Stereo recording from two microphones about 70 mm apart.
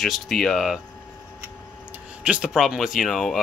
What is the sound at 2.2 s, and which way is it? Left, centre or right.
Speech, centre.